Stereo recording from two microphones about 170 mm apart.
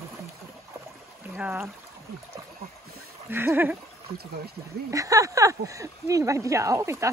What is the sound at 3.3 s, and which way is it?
Speech, 15° right (ahead or behind).